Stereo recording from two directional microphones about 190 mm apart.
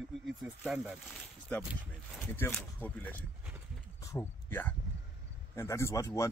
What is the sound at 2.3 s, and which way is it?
Speech, 10° left (ahead or behind).